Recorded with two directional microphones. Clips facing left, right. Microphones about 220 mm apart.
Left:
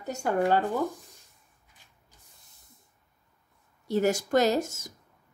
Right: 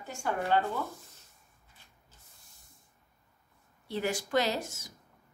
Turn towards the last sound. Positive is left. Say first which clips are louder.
# left 8 dB
turn(degrees=45)  # may be behind; listen again after turning